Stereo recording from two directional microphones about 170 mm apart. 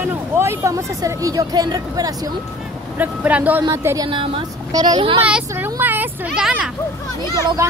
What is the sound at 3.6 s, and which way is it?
A woman's voice, 20° right (ahead or behind).